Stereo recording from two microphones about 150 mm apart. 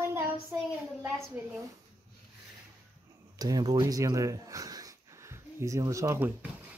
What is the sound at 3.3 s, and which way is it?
Speech, 25° right (ahead or behind).